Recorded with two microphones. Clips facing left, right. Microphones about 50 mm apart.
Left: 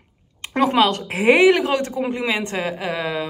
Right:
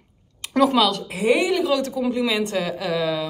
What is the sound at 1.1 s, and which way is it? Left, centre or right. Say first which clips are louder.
Speech: left 5 dB; left.